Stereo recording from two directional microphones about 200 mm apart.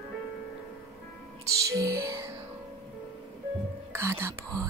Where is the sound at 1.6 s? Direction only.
15° right (ahead or behind).